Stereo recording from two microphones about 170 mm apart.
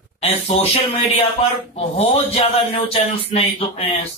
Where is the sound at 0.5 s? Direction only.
35° left (ahead or behind).